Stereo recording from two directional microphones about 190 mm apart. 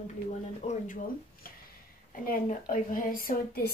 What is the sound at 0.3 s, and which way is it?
Speech, 35° left (ahead or behind).